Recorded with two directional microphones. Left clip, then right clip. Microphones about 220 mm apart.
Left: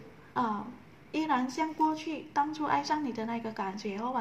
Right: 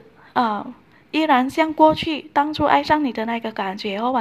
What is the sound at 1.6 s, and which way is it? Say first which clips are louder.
A woman's voice: right 14 dB; 35° right (ahead or behind).